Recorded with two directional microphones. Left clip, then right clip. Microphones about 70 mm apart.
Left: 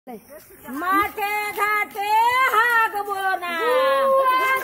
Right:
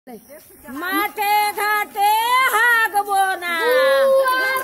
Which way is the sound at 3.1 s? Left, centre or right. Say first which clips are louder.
Right 5 dB; right.